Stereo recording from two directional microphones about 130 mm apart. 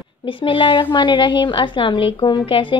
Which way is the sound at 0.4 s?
40° left (ahead or behind).